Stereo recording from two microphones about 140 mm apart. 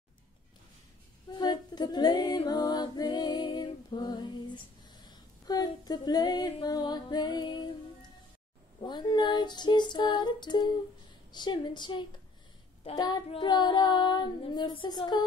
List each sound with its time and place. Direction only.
1.3 s female singing: 30° left (ahead or behind)
8.8 s child singing: 30° left (ahead or behind)